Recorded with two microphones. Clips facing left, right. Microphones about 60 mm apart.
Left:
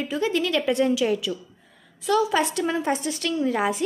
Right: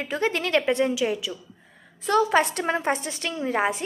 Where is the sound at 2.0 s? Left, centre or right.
Right.